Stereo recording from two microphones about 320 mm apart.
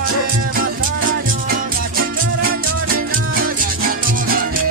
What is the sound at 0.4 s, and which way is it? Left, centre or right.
Music, right.